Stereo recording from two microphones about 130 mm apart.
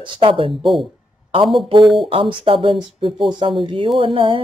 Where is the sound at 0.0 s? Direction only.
40° right (ahead or behind).